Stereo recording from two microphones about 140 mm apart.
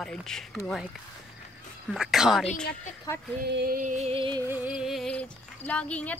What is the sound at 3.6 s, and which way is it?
Music, 60° right (ahead or behind).